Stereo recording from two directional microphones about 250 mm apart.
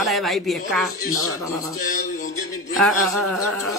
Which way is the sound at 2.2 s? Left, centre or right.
Left.